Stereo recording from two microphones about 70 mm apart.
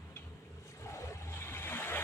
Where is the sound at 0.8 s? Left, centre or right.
Left.